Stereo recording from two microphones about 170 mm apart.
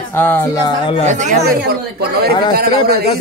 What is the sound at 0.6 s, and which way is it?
Speech, 30° left (ahead or behind).